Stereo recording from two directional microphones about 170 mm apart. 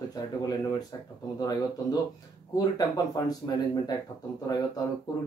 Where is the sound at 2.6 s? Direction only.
25° left (ahead or behind).